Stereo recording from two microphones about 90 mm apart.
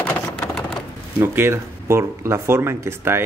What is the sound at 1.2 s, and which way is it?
Speech, 25° right (ahead or behind).